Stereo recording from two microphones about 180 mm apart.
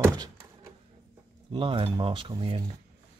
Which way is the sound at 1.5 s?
30° right (ahead or behind).